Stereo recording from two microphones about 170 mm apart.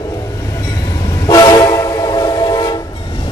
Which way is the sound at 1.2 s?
25° left (ahead or behind).